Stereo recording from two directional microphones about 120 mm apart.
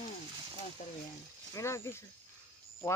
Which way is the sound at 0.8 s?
90° left.